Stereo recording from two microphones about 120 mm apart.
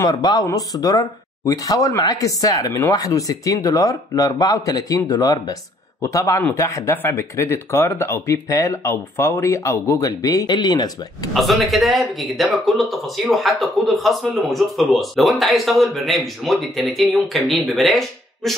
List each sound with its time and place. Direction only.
0.0 s speech: 35° left (ahead or behind)
11.3 s speech: centre (ahead or behind)